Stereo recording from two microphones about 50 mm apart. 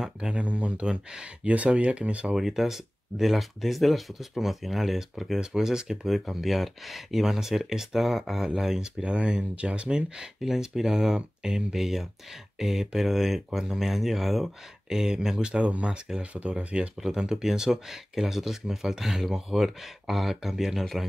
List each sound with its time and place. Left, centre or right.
0.0 s speech: centre
2.3 s speech: centre
9.0 s speech: right
15.4 s speech: right
17.0 s speech: centre